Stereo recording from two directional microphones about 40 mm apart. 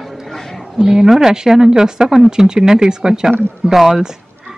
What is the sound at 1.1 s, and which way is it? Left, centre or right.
Speech, centre.